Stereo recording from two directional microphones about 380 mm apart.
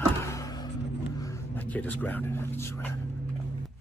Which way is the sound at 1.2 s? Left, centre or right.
Centre.